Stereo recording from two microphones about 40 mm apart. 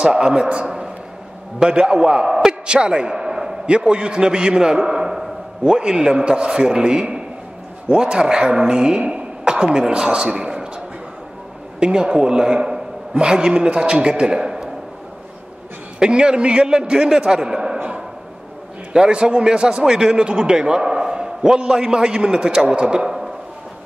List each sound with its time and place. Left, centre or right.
0.0 s a man's voice: right
11.8 s a man's voice: centre
16.0 s a man's voice: right
18.9 s a man's voice: centre